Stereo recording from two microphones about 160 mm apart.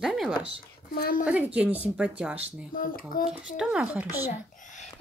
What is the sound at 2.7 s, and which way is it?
Speech, 60° left (ahead or behind).